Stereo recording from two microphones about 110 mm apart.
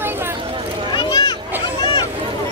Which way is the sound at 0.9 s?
40° left (ahead or behind).